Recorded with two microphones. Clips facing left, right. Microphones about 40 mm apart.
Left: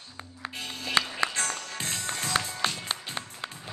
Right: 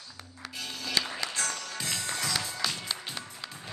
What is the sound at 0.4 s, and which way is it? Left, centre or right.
Music, left.